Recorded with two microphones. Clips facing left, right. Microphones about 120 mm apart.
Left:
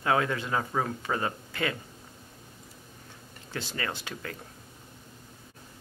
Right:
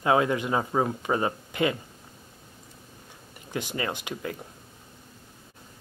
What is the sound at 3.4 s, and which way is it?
Speech, 15° right (ahead or behind).